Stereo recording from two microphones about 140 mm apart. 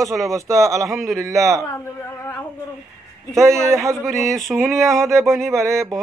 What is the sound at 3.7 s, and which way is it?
Speech, 20° right (ahead or behind).